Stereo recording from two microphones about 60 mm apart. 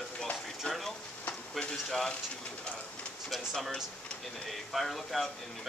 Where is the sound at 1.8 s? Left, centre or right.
Centre.